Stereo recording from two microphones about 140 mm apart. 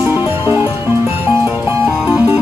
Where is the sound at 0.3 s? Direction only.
15° right (ahead or behind).